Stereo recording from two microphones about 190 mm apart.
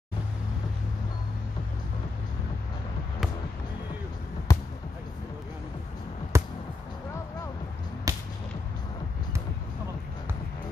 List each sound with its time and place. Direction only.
4.5 s basketball bounce: 15° left (ahead or behind)
6.3 s music: 15° right (ahead or behind)
8.1 s whip: 15° right (ahead or behind)